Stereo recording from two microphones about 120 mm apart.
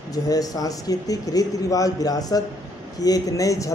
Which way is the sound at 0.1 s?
30° left (ahead or behind).